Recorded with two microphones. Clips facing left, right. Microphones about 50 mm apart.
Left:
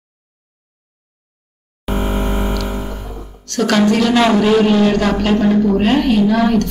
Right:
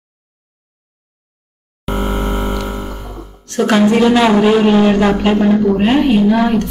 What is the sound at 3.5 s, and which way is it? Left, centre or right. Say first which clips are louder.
Speech: right 2 dB; centre.